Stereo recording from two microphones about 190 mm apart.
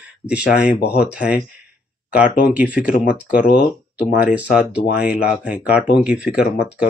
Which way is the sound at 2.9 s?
45° left (ahead or behind).